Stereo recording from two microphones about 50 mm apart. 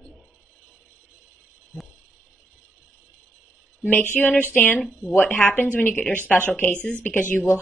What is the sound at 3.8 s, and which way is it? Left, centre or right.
Speech, left.